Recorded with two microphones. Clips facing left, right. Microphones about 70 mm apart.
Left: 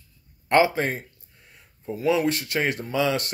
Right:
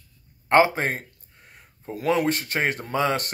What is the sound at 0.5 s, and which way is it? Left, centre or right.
A man's voice, right.